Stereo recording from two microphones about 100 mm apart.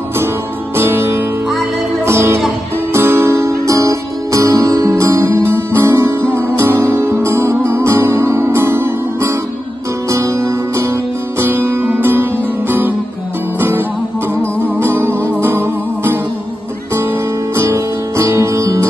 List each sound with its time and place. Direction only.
0.7 s music: 25° right (ahead or behind)
17.6 s guitar: 30° right (ahead or behind)